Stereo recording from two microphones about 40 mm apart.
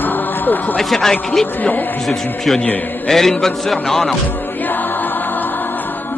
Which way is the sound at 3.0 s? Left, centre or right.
Centre.